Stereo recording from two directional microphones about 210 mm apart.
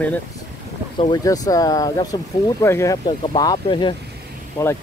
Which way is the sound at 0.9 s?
20° left (ahead or behind).